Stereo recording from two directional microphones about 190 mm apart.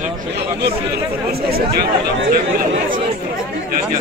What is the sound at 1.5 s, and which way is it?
Speech, 55° right (ahead or behind).